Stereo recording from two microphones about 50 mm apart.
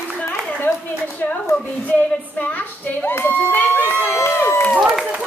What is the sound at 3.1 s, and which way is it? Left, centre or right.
Speech, left.